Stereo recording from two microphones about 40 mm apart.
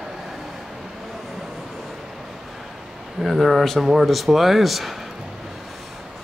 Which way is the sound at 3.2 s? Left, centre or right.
Centre.